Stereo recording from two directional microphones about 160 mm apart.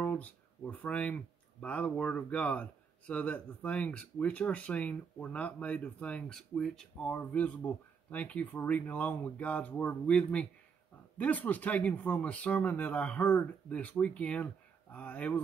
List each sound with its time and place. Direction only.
0.0 s speech: 10° left (ahead or behind)